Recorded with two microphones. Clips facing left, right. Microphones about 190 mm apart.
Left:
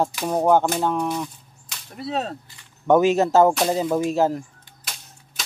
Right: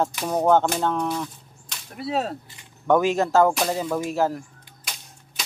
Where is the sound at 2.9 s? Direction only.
20° left (ahead or behind).